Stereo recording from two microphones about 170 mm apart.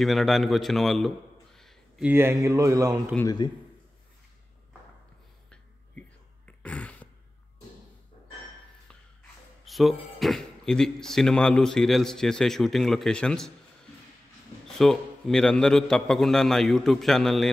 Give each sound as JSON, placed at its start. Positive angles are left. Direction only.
{"t": 0.0, "sound": "a man's voice", "side_deg": 0}
{"t": 2.0, "sound": "speech", "side_deg": -15}
{"t": 3.3, "sound": "a man's voice", "side_deg": 25}
{"t": 5.5, "sound": "throat clearing", "side_deg": 5}
{"t": 9.7, "sound": "speech", "side_deg": 0}
{"t": 14.7, "sound": "speech", "side_deg": 0}